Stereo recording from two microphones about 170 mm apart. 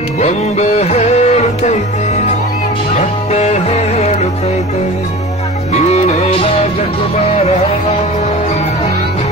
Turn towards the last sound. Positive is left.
turn(degrees=35)  # may be behind; listen again after turning